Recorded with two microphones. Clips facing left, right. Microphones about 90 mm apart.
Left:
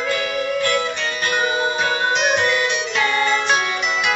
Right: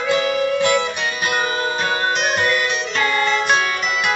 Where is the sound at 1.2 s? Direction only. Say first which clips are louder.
Left 1 dB; 5° right (ahead or behind).